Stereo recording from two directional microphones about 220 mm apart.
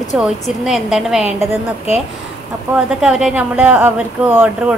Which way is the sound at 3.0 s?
5° right (ahead or behind).